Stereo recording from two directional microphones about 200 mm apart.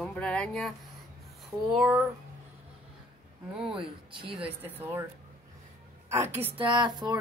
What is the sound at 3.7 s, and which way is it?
Speech, 25° right (ahead or behind).